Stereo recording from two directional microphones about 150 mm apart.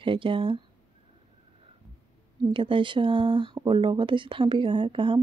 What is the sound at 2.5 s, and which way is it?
Speech, 35° right (ahead or behind).